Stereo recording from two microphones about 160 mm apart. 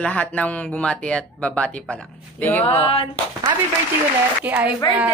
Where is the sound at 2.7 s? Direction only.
35° left (ahead or behind).